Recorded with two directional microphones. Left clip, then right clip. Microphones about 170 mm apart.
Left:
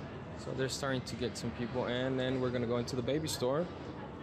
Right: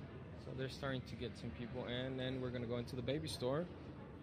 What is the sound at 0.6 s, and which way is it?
Speech, 25° left (ahead or behind).